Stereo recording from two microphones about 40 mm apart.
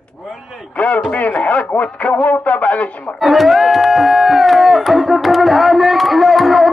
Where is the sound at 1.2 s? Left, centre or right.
Left.